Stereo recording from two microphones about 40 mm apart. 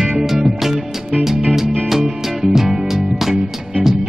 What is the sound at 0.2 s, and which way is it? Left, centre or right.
Music, centre.